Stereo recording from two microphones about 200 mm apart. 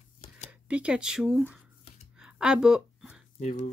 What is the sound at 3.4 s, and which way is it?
Speech, 35° left (ahead or behind).